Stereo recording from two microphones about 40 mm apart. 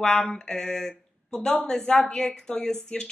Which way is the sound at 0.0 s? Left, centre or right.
Centre.